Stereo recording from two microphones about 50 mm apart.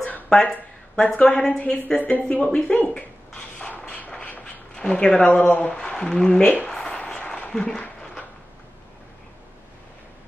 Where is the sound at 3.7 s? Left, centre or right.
Left.